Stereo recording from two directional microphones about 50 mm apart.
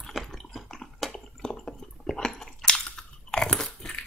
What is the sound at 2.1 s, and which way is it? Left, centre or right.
Crunch, centre.